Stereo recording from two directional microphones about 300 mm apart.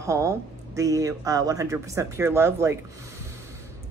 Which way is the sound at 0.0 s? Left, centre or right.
Centre.